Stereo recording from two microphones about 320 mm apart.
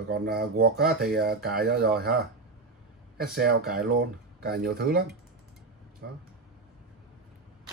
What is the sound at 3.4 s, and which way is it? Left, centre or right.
Speech, right.